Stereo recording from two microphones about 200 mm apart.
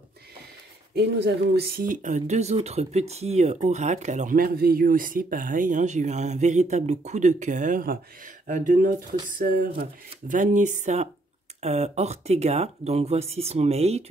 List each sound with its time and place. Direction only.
0.9 s speech: 55° right (ahead or behind); by 14.0 s 30° right (ahead or behind)